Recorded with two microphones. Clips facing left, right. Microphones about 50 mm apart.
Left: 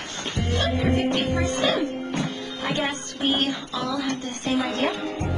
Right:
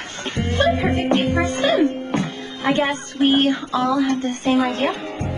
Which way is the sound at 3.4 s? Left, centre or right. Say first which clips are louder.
Right 7 dB; right.